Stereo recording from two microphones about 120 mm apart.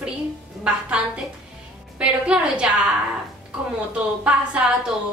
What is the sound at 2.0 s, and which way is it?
Speech, 10° right (ahead or behind).